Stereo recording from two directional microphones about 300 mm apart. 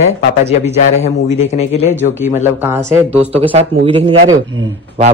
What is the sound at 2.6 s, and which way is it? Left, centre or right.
Speech, centre.